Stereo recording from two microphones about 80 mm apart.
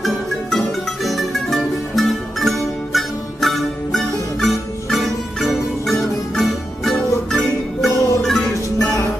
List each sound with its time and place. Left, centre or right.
0.0 s music: centre
8.7 s music: left